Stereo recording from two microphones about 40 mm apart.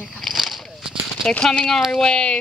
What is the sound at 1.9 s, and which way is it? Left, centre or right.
Speech, left.